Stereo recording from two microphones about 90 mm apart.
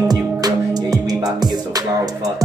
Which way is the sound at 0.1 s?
45° right (ahead or behind).